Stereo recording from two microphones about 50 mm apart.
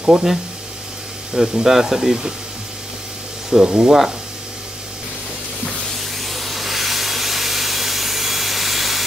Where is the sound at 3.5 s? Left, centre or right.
Centre.